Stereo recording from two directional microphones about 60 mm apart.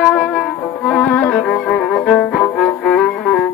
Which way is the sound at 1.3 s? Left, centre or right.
Centre.